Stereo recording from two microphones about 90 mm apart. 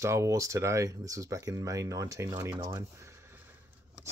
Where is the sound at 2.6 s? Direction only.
30° right (ahead or behind).